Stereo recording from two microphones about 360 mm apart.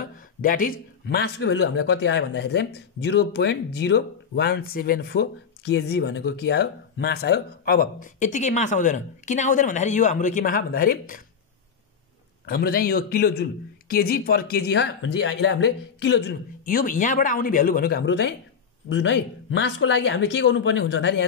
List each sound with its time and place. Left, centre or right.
0.4 s speech: left
12.4 s speech: left